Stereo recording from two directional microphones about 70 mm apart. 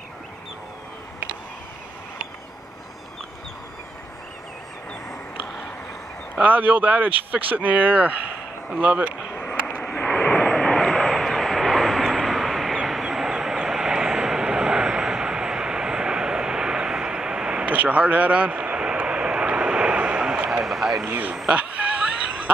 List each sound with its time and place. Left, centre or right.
6.4 s speech: right
9.3 s vehicle: centre
20.6 s vehicle: centre
21.1 s speech: right
21.5 s a sound: centre